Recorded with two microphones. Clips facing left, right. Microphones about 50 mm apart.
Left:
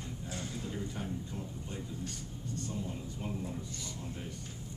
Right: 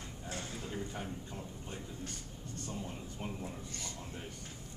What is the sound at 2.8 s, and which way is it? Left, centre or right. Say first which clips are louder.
Speech: left 2 dB; right.